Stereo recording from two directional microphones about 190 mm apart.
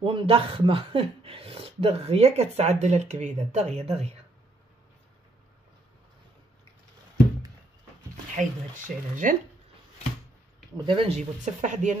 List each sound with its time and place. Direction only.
0.0 s speech: 25° right (ahead or behind)
8.4 s speech: 45° right (ahead or behind)
10.9 s speech: 30° right (ahead or behind)